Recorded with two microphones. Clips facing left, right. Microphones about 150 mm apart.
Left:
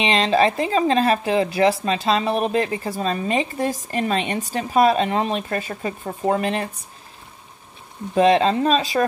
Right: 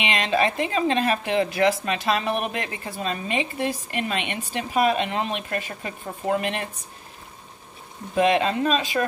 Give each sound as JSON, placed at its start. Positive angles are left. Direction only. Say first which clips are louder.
{"t": 0.0, "sound": "a woman's voice", "louder": "left 5 dB", "side_deg": 35}
{"t": 8.1, "sound": "a woman's voice", "louder": "left 4 dB", "side_deg": 30}